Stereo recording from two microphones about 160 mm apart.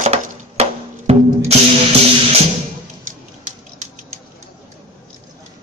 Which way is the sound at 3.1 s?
50° right (ahead or behind).